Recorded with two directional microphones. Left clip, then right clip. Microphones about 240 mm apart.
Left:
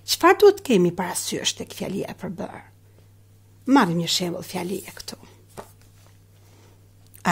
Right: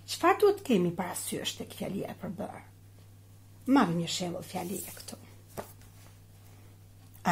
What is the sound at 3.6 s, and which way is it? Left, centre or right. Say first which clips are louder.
Speech: left 8 dB; left.